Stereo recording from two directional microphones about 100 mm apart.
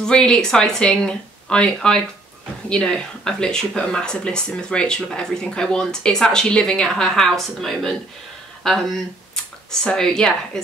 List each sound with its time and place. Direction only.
0.0 s speech: 10° left (ahead or behind)